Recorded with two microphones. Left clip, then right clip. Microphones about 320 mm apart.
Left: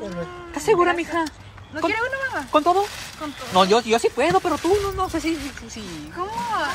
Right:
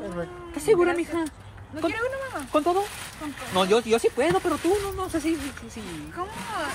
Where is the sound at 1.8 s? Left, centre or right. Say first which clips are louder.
Left 5 dB; left.